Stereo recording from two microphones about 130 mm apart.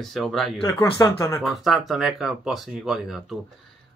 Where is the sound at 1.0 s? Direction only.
25° left (ahead or behind).